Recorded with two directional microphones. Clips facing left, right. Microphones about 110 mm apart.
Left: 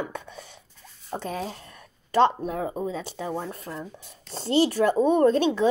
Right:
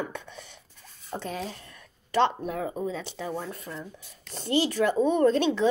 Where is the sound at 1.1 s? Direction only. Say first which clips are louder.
Left 2 dB; 20° left (ahead or behind).